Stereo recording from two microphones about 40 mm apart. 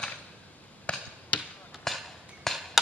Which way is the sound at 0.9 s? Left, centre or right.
Left.